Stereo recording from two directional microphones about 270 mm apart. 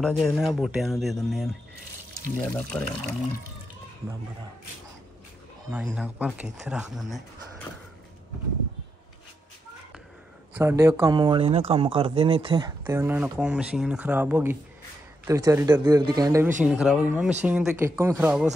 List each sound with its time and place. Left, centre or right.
0.0 s speech: centre
5.7 s speech: centre
10.5 s speech: centre